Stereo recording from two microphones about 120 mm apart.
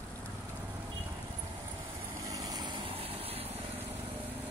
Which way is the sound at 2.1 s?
30° right (ahead or behind).